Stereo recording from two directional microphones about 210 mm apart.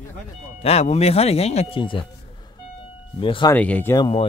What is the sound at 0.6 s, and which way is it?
Speech, 30° left (ahead or behind).